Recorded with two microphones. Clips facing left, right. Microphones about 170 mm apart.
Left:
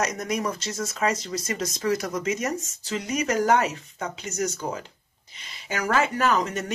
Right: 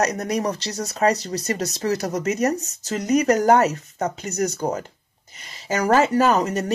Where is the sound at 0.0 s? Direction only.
35° right (ahead or behind).